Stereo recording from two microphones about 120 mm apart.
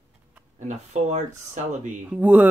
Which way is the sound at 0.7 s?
75° right (ahead or behind).